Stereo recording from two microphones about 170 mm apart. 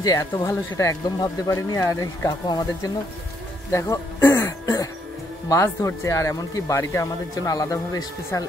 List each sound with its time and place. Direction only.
0.0 s speech: 20° left (ahead or behind)